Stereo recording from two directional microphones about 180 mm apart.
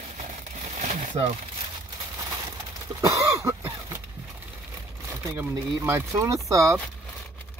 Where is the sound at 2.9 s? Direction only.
15° right (ahead or behind).